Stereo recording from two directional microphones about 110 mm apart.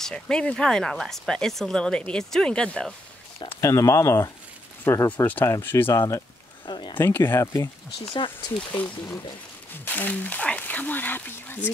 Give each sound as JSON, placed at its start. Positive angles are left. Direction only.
{"t": 0.0, "sound": "speech", "side_deg": 5}
{"t": 3.4, "sound": "speech", "side_deg": 30}
{"t": 6.6, "sound": "a sound", "side_deg": 45}
{"t": 7.0, "sound": "speech", "side_deg": 20}
{"t": 8.7, "sound": "speech", "side_deg": 15}